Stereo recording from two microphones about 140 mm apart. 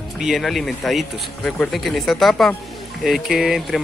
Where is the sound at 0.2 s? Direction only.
Centre (ahead or behind).